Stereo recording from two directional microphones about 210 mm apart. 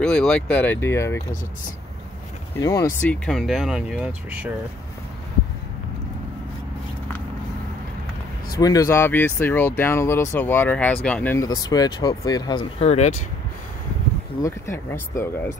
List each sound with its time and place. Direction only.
0.0 s speech: 5° left (ahead or behind)
2.6 s speech: 15° left (ahead or behind); by 4.5 s 5° right (ahead or behind)
8.5 s speech: 15° left (ahead or behind)
14.4 s speech: 15° left (ahead or behind)